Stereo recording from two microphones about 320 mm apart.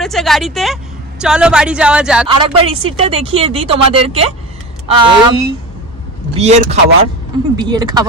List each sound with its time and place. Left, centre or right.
0.0 s speech: centre
2.2 s speech: centre